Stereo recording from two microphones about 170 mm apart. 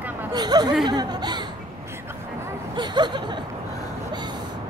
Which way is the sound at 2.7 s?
25° right (ahead or behind).